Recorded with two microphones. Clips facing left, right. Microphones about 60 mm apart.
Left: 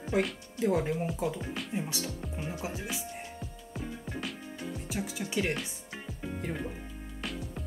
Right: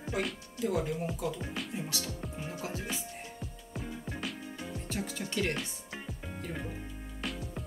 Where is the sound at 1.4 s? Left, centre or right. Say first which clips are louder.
Left 1 dB; centre.